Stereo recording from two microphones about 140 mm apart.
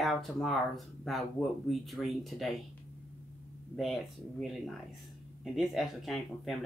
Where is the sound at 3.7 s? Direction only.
Centre (ahead or behind).